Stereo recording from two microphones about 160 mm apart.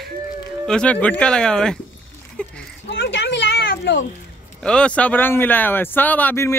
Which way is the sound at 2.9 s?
90° left.